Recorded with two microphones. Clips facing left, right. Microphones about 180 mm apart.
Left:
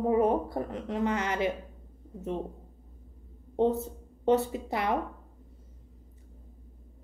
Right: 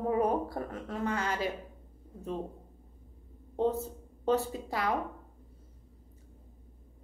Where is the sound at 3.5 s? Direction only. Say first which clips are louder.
Left 3 dB; 20° left (ahead or behind).